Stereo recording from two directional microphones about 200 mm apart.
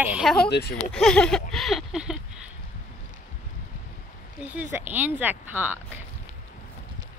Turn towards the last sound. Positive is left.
turn(degrees=-10)  # may be behind; listen again after turning